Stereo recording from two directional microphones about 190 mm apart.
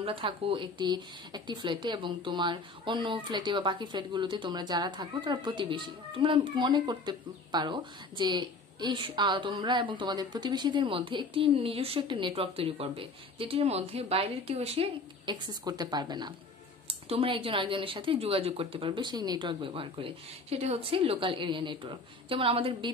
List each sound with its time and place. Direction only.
0.0 s speech: 30° right (ahead or behind)